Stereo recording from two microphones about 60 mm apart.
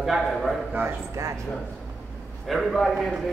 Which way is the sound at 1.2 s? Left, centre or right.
Right.